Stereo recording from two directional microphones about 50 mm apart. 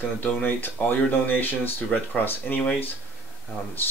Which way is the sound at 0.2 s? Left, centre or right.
Left.